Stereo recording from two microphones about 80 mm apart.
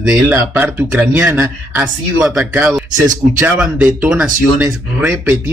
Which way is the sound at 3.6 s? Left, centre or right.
Centre.